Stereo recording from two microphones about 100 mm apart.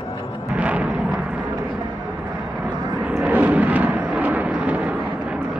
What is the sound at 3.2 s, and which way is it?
Vehicle, 15° right (ahead or behind).